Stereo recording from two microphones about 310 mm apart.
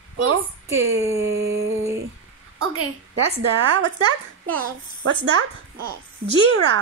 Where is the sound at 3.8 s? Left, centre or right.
Centre.